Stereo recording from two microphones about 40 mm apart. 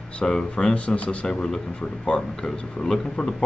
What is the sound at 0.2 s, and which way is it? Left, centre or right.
A man's voice, left.